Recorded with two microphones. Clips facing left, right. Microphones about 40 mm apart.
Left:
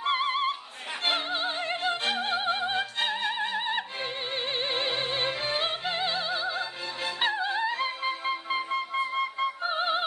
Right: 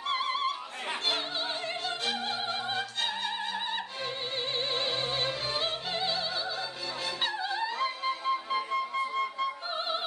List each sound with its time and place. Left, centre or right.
0.0 s opera: left
7.2 s music: left